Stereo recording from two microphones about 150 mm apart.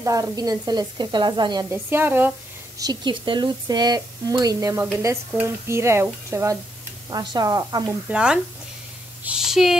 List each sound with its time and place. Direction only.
0.0 s speech: 25° right (ahead or behind)
1.7 s speech: 15° right (ahead or behind)
2.8 s speech: 30° right (ahead or behind)
8.1 s speech: 5° right (ahead or behind)